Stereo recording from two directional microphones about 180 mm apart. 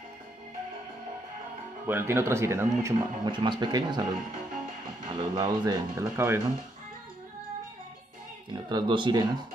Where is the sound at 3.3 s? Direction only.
25° right (ahead or behind).